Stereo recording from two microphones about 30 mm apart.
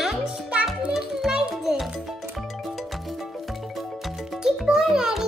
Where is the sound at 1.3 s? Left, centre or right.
Right.